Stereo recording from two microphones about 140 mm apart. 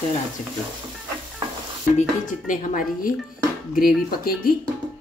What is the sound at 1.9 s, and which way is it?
Speech, 70° left (ahead or behind).